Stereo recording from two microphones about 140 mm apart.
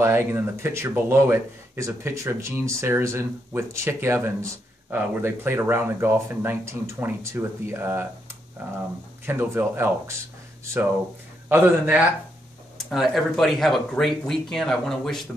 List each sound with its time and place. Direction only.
0.0 s speech: 15° right (ahead or behind)
9.2 s speech: 15° right (ahead or behind)
12.7 s speech: centre (ahead or behind)